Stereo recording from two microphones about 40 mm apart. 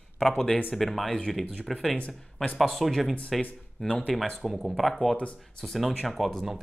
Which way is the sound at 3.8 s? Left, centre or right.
Left.